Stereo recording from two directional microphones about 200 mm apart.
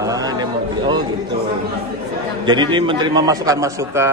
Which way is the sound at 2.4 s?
20° right (ahead or behind).